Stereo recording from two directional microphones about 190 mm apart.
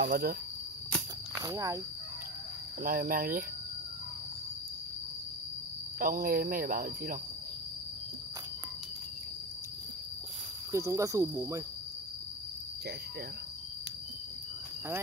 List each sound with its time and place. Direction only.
0.0 s speech: 50° right (ahead or behind)
1.4 s speech: 20° right (ahead or behind)
2.8 s speech: 50° right (ahead or behind)
5.9 s speech: 50° right (ahead or behind)
10.7 s speech: 15° right (ahead or behind)